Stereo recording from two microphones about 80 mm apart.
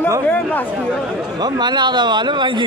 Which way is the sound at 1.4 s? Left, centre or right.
Right.